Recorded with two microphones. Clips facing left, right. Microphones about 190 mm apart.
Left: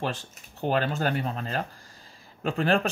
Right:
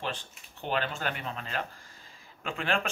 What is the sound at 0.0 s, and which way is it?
Speech, 40° left (ahead or behind).